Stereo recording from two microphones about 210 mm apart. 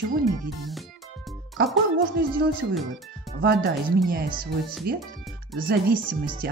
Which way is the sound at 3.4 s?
50° right (ahead or behind).